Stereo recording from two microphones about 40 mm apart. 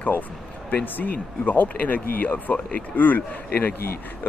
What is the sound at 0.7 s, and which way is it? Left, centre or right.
Speech, left.